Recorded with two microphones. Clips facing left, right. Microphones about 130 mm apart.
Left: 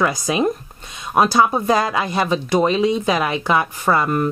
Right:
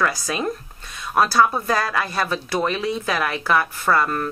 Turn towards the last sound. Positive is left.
turn(degrees=15)  # may be behind; listen again after turning